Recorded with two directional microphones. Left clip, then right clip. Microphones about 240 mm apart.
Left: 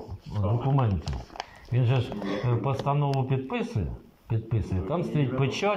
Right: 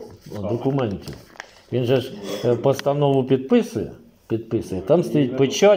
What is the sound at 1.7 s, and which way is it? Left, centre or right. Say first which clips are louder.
Speech: right 11 dB; right.